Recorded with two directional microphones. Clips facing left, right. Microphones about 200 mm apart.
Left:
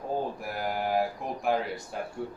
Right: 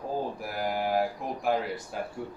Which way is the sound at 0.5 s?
Centre (ahead or behind).